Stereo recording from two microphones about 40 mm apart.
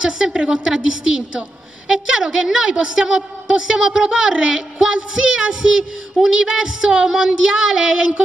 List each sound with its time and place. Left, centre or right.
0.0 s speech: centre